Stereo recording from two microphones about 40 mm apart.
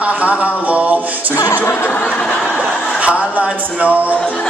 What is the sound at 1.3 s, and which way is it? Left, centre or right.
Chuckle, left.